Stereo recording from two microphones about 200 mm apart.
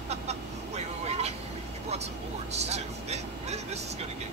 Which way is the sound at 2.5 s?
35° right (ahead or behind).